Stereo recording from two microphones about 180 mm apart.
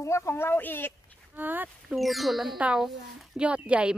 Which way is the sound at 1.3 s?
10° right (ahead or behind).